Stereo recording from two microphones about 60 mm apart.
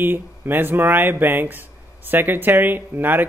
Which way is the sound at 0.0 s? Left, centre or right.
Right.